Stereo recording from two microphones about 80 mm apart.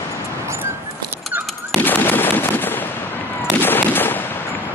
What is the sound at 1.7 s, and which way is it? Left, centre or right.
Machine gun, left.